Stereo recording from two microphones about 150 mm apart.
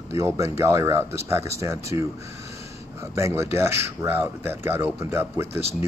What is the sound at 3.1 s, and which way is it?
Speech, 20° right (ahead or behind).